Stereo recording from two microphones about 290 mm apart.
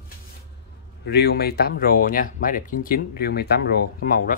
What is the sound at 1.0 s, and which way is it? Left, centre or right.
Speech, left.